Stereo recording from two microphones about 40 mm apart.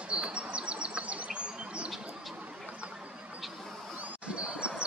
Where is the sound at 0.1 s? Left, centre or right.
Right.